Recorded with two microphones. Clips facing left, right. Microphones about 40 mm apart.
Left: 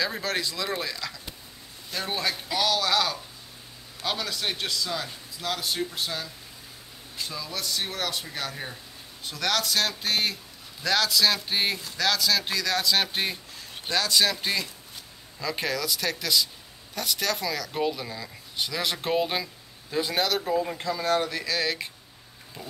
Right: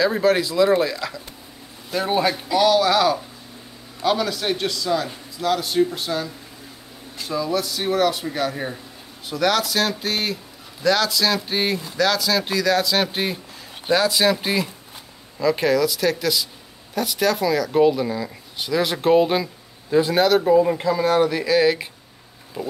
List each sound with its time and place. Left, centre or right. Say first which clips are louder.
0.0 s speech: right 10 dB; centre